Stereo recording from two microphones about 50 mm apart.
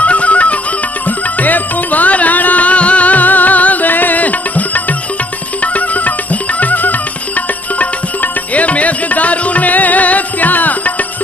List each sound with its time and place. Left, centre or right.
0.0 s music: left